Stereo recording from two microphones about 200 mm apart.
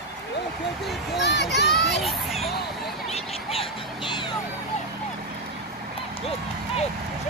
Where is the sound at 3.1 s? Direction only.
30° left (ahead or behind).